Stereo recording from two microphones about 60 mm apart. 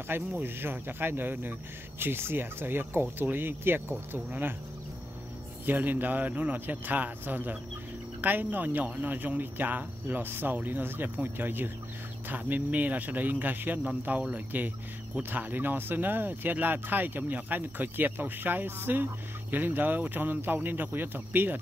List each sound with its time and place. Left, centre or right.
0.3 s speech: right
5.7 s speech: right